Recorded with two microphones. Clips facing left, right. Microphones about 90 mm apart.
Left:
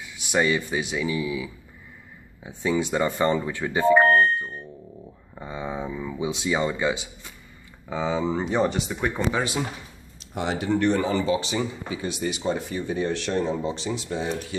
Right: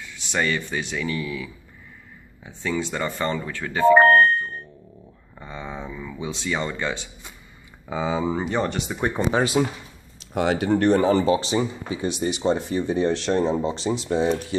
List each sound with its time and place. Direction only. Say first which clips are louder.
0.0 s speech: left 2 dB; 10° left (ahead or behind)
3.8 s speech: right 4 dB; 55° right (ahead or behind)
5.3 s speech: left 3 dB; 15° left (ahead or behind)
7.9 s speech: right 1 dB; 10° right (ahead or behind)
9.2 s speech: right 3 dB; 10° right (ahead or behind)
10.3 s speech: right 5 dB; 65° right (ahead or behind)
10.7 s speech: right 3 dB; 45° right (ahead or behind)